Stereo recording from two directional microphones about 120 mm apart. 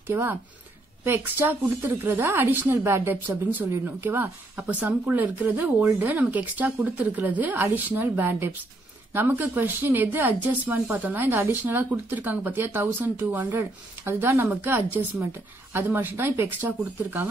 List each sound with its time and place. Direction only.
0.0 s speech: 20° right (ahead or behind)